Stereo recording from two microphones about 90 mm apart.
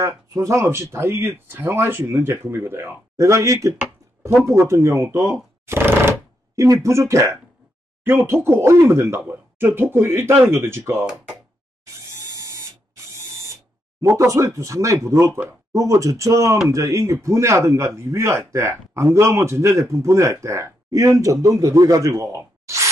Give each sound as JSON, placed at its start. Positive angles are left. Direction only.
{"t": 0.0, "sound": "speech", "side_deg": -35}
{"t": 11.8, "sound": "a sound", "side_deg": -35}
{"t": 14.0, "sound": "a man's voice", "side_deg": -35}